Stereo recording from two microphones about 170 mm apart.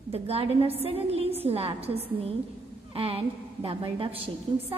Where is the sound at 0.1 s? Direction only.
35° right (ahead or behind).